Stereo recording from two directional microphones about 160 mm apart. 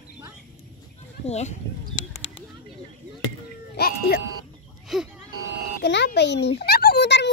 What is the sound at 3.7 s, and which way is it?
Speech, 80° left.